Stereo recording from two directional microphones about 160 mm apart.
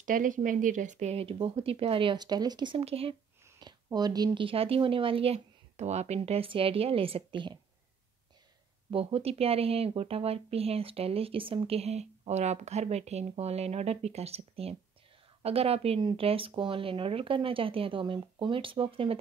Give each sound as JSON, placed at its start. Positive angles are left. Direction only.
{"t": 0.0, "sound": "speech", "side_deg": -55}
{"t": 3.4, "sound": "speech", "side_deg": -25}
{"t": 8.9, "sound": "speech", "side_deg": -40}